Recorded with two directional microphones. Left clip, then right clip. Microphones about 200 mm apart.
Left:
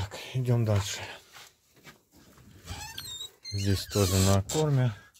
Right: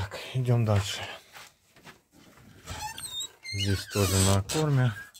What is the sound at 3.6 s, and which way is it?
Speech, 25° left (ahead or behind).